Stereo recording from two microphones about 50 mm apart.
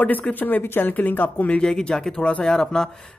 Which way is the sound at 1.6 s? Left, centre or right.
Centre.